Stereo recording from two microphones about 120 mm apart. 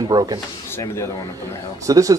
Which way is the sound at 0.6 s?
20° left (ahead or behind).